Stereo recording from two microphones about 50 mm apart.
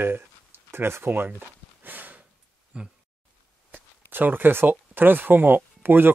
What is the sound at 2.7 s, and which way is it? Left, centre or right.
Speech, right.